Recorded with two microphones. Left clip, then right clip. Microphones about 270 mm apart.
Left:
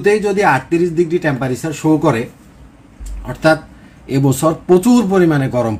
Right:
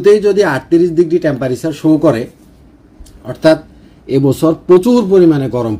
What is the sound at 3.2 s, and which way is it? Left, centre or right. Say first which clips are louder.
Speech: right 3 dB; centre.